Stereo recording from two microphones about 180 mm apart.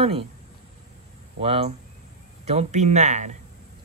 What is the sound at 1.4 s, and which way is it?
Speech, 35° right (ahead or behind).